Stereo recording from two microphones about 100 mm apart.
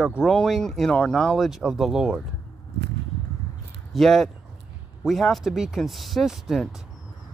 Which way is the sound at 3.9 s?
Centre (ahead or behind).